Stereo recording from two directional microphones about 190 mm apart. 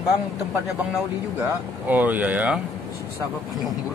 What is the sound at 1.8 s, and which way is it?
Speech, 10° right (ahead or behind).